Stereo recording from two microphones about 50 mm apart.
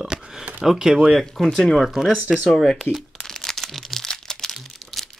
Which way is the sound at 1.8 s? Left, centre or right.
Centre.